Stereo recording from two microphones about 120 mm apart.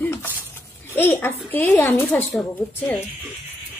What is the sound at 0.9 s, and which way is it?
A child's voice, 15° left (ahead or behind).